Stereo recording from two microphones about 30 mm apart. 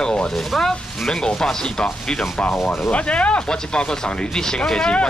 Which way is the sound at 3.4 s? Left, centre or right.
Left.